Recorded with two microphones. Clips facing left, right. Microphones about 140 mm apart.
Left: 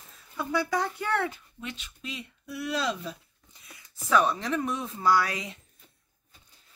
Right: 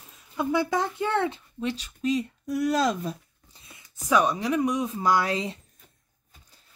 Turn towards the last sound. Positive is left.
turn(degrees=-25)  # may be behind; listen again after turning